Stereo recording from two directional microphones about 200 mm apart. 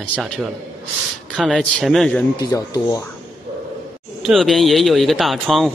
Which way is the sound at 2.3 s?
20° left (ahead or behind).